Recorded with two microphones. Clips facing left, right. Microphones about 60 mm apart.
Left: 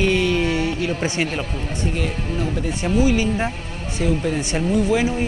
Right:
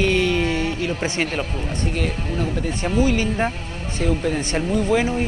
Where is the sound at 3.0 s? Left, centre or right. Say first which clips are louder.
Left 1 dB; right.